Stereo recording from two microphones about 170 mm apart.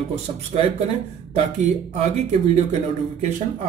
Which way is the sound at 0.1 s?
35° right (ahead or behind).